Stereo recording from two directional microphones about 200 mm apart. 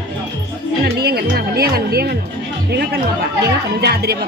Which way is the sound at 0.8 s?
55° right (ahead or behind).